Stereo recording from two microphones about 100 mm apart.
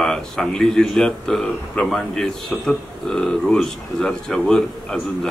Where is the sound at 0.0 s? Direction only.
5° left (ahead or behind).